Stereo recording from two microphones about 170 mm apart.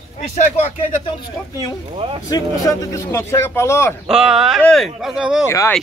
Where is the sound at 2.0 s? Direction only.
30° right (ahead or behind).